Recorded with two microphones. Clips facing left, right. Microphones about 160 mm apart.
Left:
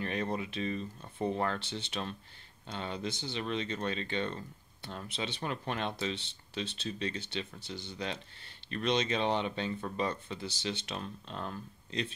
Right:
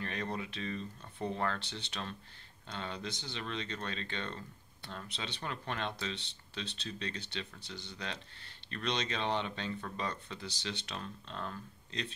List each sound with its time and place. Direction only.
0.0 s speech: 15° left (ahead or behind)
1.6 s speech: 5° left (ahead or behind)
10.4 s speech: 5° left (ahead or behind)
11.0 s speech: 15° left (ahead or behind)